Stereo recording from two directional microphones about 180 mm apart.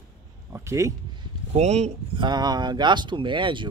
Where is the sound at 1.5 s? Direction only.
40° right (ahead or behind).